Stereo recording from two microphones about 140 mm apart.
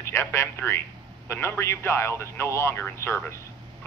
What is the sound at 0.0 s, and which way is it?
Speech, 20° left (ahead or behind).